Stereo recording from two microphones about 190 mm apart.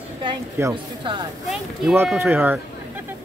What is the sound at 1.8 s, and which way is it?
Speech, 10° right (ahead or behind).